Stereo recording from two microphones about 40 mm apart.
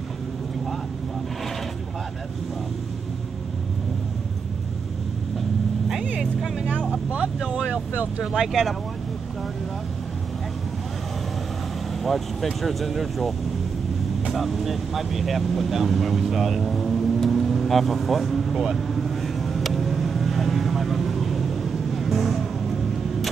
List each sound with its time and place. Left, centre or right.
7.4 s vehicle: right
8.2 s speech: centre
12.0 s speech: centre
14.3 s speech: centre
18.6 s vehicle: centre